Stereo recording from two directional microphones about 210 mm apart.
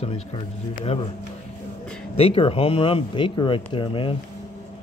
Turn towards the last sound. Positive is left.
turn(degrees=25)  # may be behind; listen again after turning